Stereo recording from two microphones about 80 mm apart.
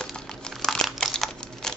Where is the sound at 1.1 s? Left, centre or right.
Centre.